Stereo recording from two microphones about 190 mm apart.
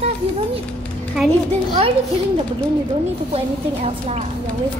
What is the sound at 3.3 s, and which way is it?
Speech, 35° right (ahead or behind).